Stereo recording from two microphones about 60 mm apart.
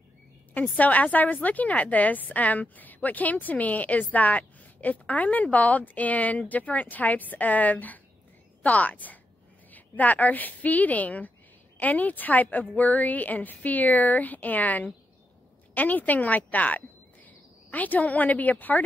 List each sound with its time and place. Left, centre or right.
0.7 s a woman's voice: left